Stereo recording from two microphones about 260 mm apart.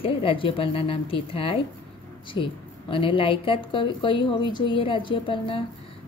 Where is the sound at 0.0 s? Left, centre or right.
Left.